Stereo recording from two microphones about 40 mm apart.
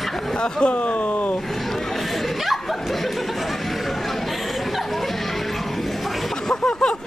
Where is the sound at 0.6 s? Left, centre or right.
Left.